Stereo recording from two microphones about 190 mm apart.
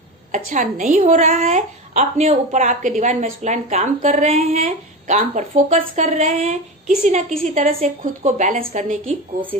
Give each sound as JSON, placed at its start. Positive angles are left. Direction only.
{"t": 0.3, "sound": "a woman's voice", "side_deg": -45}